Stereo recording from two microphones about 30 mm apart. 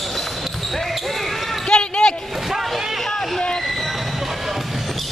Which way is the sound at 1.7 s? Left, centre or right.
Left.